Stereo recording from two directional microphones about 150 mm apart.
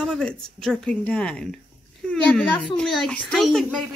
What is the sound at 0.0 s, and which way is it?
A child's voice, 5° left (ahead or behind).